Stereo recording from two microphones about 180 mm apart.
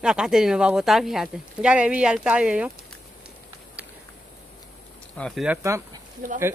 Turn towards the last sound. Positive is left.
turn(degrees=-50)  # may be behind; listen again after turning